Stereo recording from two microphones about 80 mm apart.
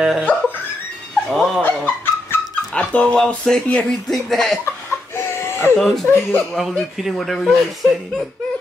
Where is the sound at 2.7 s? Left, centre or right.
Centre.